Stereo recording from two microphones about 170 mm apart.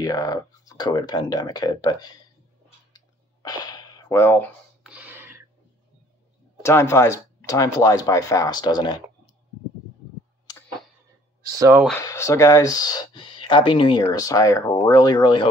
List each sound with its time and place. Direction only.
0.0 s speech: 20° left (ahead or behind)
3.4 s speech: 25° left (ahead or behind)
4.8 s a sound: 10° right (ahead or behind)
6.6 s speech: 15° left (ahead or behind)
11.5 s speech: 20° right (ahead or behind)
12.0 s speech: 20° left (ahead or behind)